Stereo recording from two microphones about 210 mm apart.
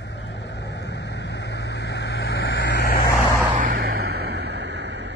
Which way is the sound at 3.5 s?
45° right (ahead or behind).